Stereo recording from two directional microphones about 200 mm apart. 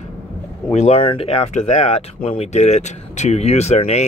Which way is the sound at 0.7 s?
35° left (ahead or behind).